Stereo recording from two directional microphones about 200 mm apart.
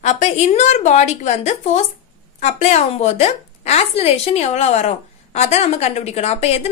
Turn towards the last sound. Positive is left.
turn(degrees=30)  # may be behind; listen again after turning